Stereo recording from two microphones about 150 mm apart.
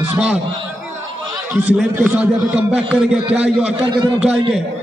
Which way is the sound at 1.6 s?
15° right (ahead or behind).